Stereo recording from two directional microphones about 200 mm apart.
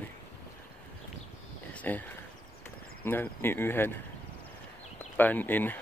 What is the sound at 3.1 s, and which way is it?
Speech, 10° left (ahead or behind).